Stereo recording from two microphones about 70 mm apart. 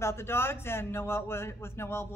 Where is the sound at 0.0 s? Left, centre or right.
Left.